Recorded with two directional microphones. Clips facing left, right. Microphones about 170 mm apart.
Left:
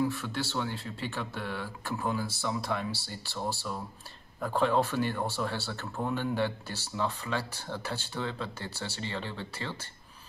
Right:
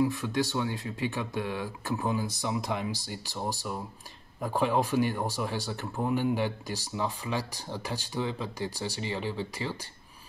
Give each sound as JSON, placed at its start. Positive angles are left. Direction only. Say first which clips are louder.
{"t": 0.0, "sound": "speech", "louder": "right 4 dB", "side_deg": -15}